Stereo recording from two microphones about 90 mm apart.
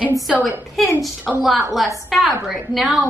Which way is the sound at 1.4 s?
Centre (ahead or behind).